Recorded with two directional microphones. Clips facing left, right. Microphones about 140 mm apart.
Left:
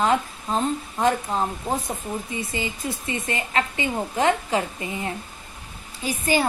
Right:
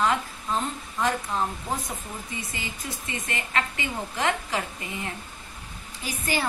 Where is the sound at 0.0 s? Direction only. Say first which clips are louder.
Left 4 dB; 25° left (ahead or behind).